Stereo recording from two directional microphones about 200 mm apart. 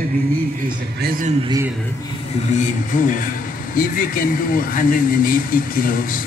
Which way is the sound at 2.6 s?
40° left (ahead or behind).